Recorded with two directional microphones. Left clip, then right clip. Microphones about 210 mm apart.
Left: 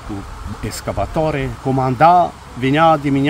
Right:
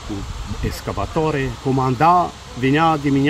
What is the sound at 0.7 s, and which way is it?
Speech, 15° left (ahead or behind).